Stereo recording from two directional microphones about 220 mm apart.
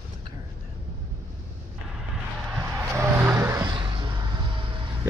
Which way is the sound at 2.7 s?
10° right (ahead or behind).